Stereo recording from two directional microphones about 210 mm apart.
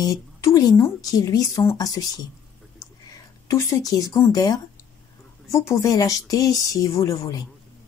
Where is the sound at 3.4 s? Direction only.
15° left (ahead or behind).